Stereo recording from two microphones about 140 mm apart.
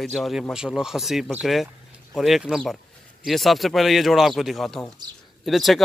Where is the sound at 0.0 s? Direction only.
Centre (ahead or behind).